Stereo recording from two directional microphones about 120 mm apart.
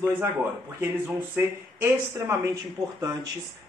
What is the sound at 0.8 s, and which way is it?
Speech, 15° right (ahead or behind).